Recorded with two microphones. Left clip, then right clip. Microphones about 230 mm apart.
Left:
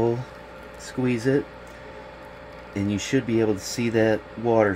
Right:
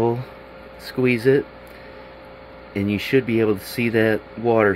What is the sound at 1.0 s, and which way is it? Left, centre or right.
Speech, centre.